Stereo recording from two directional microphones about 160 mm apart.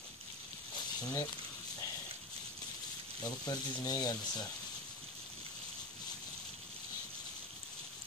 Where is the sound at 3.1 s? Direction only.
25° left (ahead or behind).